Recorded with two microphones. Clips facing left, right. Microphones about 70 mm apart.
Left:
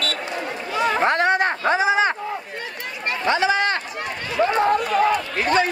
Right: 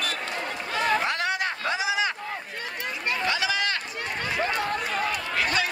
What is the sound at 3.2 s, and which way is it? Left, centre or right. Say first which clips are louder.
Run: left 9 dB; left.